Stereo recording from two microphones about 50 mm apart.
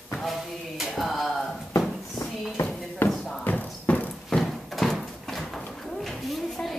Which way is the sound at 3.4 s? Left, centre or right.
Left.